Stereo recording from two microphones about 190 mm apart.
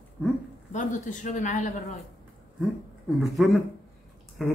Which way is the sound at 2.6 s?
Centre (ahead or behind).